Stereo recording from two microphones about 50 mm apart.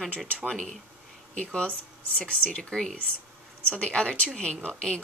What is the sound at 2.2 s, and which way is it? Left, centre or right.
Speech, centre.